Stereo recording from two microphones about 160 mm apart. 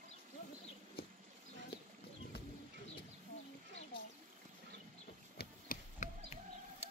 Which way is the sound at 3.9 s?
30° left (ahead or behind).